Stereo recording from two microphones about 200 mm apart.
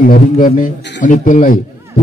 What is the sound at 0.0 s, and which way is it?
A man's voice, 40° left (ahead or behind).